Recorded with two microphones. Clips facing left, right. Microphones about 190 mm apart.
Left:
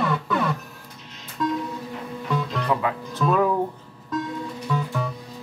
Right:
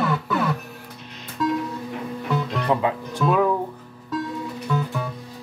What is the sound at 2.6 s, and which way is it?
Speech, 25° right (ahead or behind).